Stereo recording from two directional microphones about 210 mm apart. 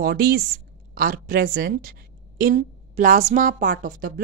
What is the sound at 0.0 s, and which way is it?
A woman's voice, 45° right (ahead or behind).